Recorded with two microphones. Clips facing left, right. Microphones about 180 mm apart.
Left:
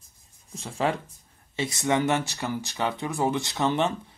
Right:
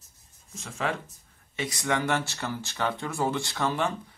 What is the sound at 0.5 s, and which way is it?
Speech, 35° left (ahead or behind).